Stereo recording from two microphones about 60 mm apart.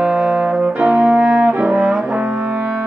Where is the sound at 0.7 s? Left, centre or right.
Right.